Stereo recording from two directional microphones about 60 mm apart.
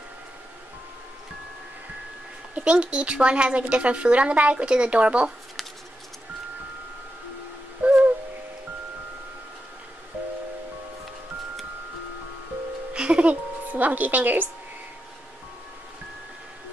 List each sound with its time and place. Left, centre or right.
2.5 s a woman's voice: centre
7.8 s owl: right
12.9 s music: centre